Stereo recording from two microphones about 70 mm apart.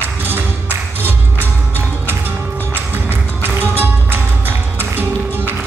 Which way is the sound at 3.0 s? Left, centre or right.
Right.